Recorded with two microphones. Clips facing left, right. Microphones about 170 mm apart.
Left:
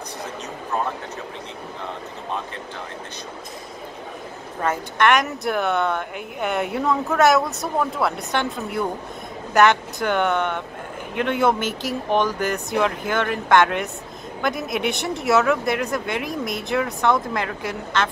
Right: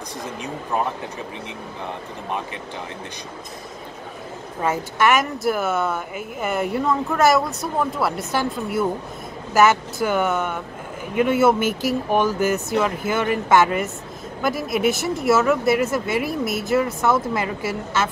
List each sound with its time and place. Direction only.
4.6 s a woman's voice: 5° right (ahead or behind)